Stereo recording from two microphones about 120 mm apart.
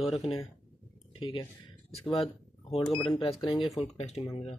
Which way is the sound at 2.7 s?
45° left (ahead or behind).